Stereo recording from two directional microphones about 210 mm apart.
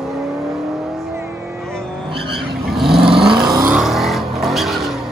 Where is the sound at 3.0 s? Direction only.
25° right (ahead or behind).